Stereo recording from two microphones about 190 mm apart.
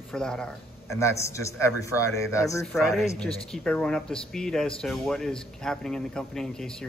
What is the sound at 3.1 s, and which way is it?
Speech, 5° left (ahead or behind).